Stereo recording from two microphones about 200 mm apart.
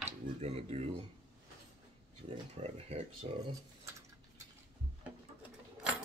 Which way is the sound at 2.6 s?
30° right (ahead or behind).